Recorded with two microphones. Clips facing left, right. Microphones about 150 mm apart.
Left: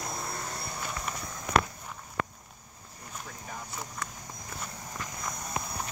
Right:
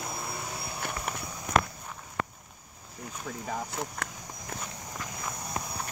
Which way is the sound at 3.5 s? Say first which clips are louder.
Right 5 dB; 65° right (ahead or behind).